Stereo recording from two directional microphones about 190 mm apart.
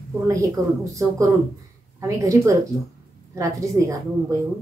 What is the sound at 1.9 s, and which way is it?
A woman's voice, 15° right (ahead or behind).